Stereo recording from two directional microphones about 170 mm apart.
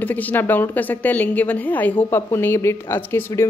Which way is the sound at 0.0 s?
10° left (ahead or behind).